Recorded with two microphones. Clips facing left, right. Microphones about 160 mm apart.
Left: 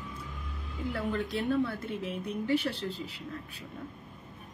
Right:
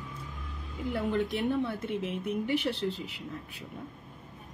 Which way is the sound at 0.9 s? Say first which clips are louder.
Right 3 dB; 20° right (ahead or behind).